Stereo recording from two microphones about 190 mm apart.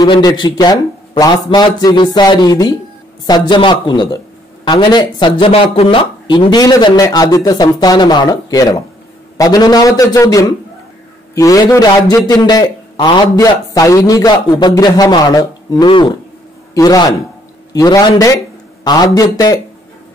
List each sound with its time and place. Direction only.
0.0 s a man's voice: 20° left (ahead or behind)